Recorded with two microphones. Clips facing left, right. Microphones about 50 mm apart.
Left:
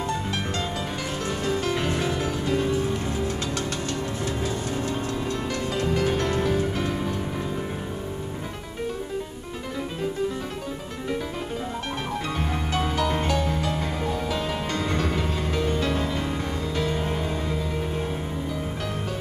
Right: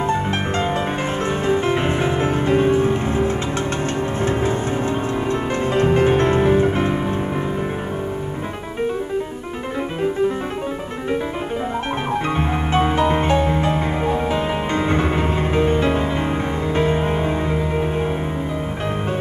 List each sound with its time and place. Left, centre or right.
0.0 s music: right
12.4 s music: right